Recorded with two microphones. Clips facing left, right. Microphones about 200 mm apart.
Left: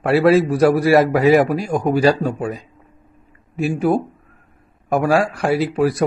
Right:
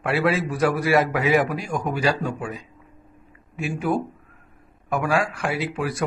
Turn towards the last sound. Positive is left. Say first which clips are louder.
# left 9 dB
turn(degrees=35)  # may be behind; listen again after turning